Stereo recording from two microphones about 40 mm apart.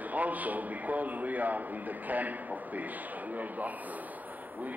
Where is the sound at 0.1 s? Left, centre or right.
Right.